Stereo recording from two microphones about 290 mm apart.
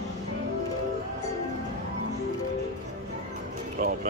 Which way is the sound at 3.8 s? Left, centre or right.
Right.